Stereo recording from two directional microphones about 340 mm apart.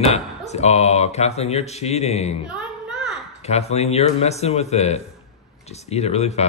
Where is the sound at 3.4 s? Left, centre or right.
Centre.